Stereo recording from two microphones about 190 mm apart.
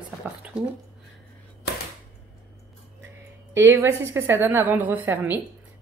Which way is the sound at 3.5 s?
15° right (ahead or behind).